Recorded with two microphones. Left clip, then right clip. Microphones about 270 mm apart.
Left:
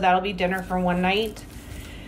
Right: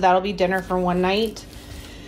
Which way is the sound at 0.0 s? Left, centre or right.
Centre.